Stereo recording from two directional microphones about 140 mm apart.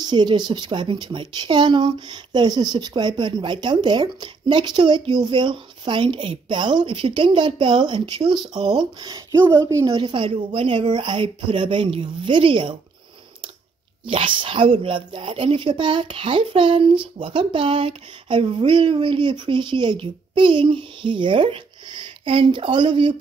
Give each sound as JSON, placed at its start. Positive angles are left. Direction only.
{"t": 0.0, "sound": "a woman's voice", "side_deg": -30}
{"t": 9.3, "sound": "speech", "side_deg": -20}
{"t": 10.0, "sound": "a woman's voice", "side_deg": -40}
{"t": 14.0, "sound": "a woman's voice", "side_deg": -40}